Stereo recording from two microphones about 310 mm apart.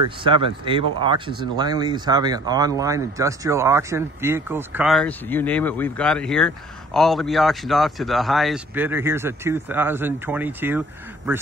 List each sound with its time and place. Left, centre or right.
0.2 s speech: centre